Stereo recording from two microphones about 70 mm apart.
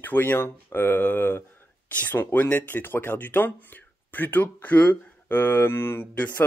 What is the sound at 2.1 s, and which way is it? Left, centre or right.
Speech, left.